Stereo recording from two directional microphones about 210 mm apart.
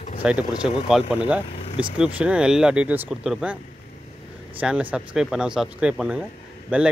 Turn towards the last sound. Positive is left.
turn(degrees=-5)  # may be behind; listen again after turning